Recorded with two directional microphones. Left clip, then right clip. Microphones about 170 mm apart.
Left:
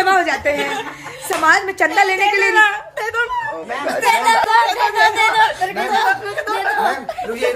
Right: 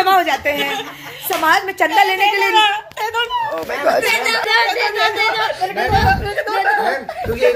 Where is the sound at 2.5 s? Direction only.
25° left (ahead or behind).